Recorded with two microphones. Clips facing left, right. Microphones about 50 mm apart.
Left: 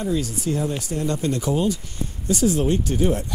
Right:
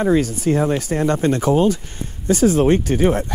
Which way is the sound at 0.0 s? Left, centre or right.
Right.